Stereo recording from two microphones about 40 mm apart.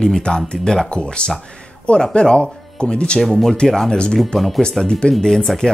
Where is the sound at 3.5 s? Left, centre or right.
Centre.